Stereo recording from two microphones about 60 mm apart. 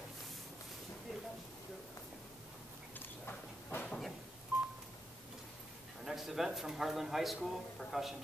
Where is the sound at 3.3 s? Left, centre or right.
Left.